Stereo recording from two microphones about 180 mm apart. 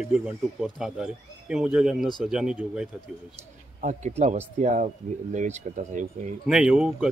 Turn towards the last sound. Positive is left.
turn(degrees=-5)  # may be behind; listen again after turning